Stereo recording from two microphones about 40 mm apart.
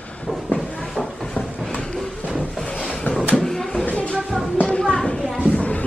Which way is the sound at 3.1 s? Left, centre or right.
Left.